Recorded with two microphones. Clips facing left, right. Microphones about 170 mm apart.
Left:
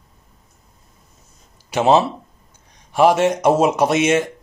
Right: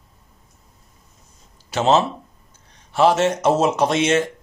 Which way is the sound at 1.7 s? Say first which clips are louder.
Left 2 dB; 15° left (ahead or behind).